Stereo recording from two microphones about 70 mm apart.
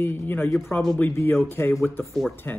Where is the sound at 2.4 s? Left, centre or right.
Left.